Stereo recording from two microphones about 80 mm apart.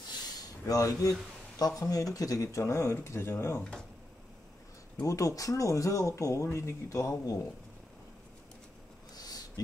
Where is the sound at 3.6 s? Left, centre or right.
Centre.